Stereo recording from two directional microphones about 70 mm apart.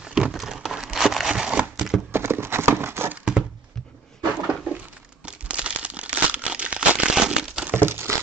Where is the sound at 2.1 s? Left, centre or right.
Right.